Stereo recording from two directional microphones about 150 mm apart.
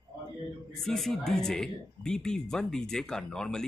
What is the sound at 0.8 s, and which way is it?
Speech, centre (ahead or behind).